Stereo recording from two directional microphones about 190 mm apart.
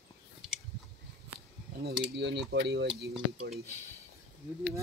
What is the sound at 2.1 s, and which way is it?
Cutlery, 65° right (ahead or behind).